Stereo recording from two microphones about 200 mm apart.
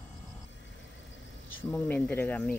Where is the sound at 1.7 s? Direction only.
5° left (ahead or behind).